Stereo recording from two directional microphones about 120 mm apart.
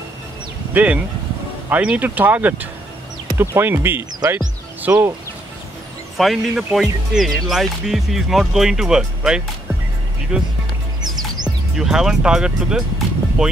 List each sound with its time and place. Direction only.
0.7 s speech: 10° right (ahead or behind)
6.1 s speech: centre (ahead or behind)
11.1 s music: 35° right (ahead or behind)
11.7 s speech: 5° right (ahead or behind)